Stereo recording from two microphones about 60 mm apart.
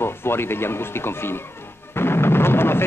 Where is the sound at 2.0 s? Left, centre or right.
Left.